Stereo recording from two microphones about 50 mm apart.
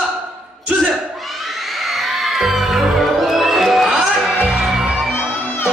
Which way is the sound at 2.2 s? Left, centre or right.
Centre.